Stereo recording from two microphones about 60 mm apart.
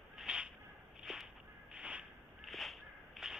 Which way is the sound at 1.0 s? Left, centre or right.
Centre.